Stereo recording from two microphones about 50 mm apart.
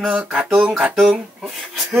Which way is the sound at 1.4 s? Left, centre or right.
Centre.